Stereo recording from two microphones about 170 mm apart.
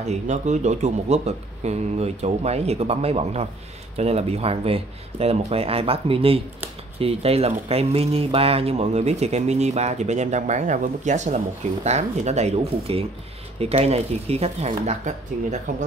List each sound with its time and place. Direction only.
0.0 s speech: 40° right (ahead or behind)